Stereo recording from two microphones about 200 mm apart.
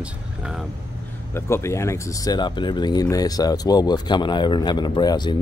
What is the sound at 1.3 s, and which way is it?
Speech, 15° left (ahead or behind).